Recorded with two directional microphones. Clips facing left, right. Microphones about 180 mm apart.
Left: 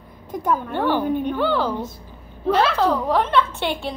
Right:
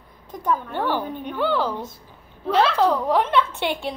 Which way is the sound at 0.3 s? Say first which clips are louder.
Left 2 dB; 10° left (ahead or behind).